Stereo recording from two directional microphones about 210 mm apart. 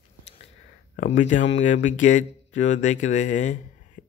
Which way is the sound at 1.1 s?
35° left (ahead or behind).